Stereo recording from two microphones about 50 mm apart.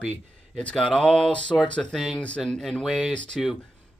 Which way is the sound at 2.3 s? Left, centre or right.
Centre.